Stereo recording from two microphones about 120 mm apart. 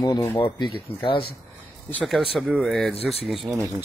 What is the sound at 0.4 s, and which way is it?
Speech, 45° left (ahead or behind).